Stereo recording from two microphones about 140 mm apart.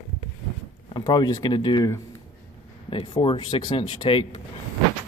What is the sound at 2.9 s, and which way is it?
Speech, 40° left (ahead or behind).